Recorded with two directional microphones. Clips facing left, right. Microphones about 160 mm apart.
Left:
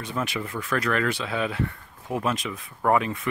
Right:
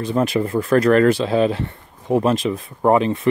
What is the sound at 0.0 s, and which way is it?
Speech, 35° right (ahead or behind).